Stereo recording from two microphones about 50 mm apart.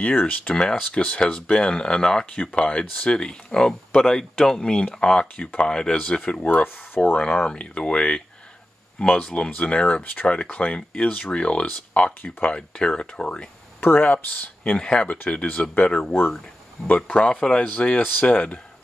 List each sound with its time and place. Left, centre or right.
0.0 s speech: left
0.7 s speech: left
6.4 s speech: left
7.2 s speech: left
13.7 s speech: left
14.6 s speech: left
15.0 s speech: left
16.1 s speech: left
16.8 s speech: left